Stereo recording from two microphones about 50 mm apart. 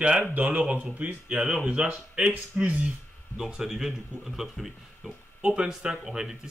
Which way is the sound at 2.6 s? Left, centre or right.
Right.